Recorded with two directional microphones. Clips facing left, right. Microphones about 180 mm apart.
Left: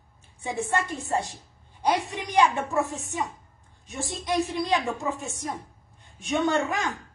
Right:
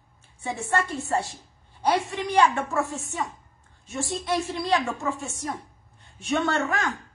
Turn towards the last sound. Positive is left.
turn(degrees=15)  # may be behind; listen again after turning